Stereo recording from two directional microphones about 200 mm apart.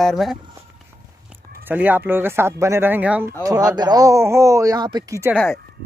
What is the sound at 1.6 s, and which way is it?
Speech, 10° right (ahead or behind).